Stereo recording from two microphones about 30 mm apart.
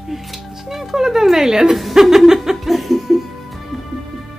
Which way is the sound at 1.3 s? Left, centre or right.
Centre.